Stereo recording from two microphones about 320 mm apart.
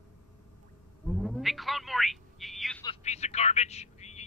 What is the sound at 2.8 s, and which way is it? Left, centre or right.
Telephone, left.